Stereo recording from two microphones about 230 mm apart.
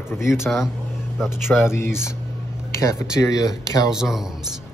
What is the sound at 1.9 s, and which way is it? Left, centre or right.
Speech, centre.